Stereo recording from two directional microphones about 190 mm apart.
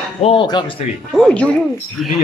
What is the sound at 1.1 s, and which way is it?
A man's voice, 5° left (ahead or behind).